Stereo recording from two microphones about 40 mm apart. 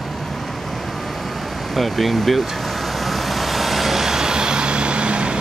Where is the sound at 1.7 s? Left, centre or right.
Centre.